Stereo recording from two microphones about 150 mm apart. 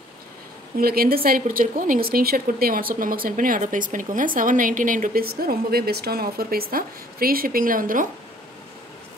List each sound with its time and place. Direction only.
0.7 s a woman's voice: 90° right; by 8.1 s 65° right (ahead or behind)